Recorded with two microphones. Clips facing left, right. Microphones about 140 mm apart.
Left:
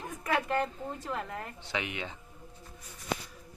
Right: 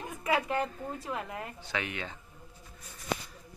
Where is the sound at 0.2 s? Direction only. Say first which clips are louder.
Even; 5° right (ahead or behind).